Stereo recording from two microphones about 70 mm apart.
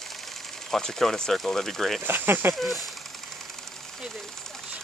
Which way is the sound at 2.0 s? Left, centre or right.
Right.